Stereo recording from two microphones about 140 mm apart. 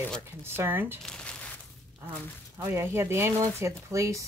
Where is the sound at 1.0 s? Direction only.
5° left (ahead or behind).